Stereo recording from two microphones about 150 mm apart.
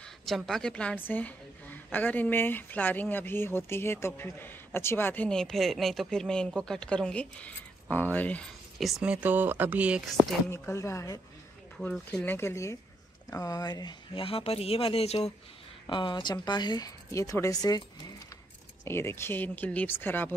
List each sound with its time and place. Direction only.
0.0 s a woman's voice: centre (ahead or behind)
10.5 s speech: 20° left (ahead or behind)
11.7 s a woman's voice: 5° left (ahead or behind); by 17.8 s 25° left (ahead or behind)
18.9 s a woman's voice: 15° left (ahead or behind)